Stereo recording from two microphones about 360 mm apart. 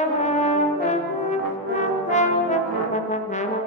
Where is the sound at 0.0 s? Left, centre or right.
Centre.